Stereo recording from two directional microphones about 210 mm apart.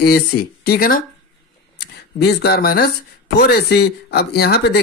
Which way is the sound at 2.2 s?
50° left (ahead or behind).